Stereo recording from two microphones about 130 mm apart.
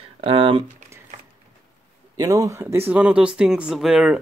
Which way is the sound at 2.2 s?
25° right (ahead or behind).